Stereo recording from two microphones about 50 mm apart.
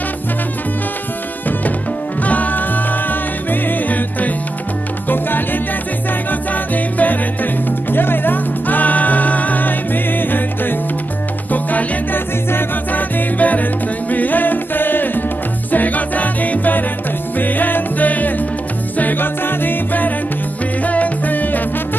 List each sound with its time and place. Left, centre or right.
2.2 s music: left
5.0 s salsa music: left
6.5 s music: left
7.9 s music: left
11.5 s salsa music: left
12.9 s music: left